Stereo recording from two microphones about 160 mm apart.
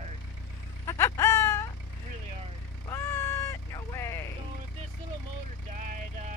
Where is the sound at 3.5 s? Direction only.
15° left (ahead or behind).